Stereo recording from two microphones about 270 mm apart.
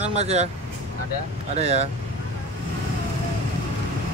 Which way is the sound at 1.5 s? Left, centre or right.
Right.